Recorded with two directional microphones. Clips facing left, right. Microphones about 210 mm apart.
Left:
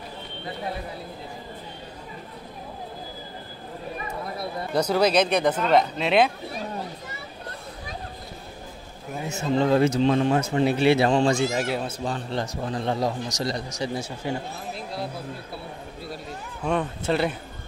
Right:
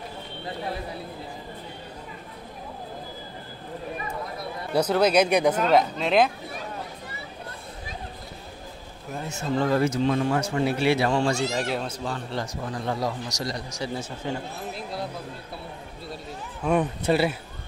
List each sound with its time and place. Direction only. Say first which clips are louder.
4.7 s speech: right 1 dB; 5° right (ahead or behind)
5.7 s speech: even; centre (ahead or behind)
9.5 s a man's voice: left 3 dB; 20° left (ahead or behind)
11.5 s speech: left 1 dB; 5° left (ahead or behind)
12.0 s a man's voice: left 2 dB; 20° left (ahead or behind)
14.7 s speech: left 1 dB; centre (ahead or behind)
16.8 s speech: right 2 dB; 10° right (ahead or behind)